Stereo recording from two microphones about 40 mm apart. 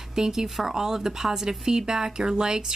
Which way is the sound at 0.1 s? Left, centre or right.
Centre.